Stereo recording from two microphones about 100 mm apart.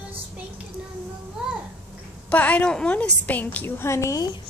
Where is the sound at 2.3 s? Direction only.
15° left (ahead or behind); by 4.3 s 30° left (ahead or behind).